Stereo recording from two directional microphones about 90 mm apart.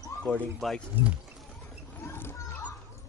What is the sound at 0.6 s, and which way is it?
Speech, centre (ahead or behind).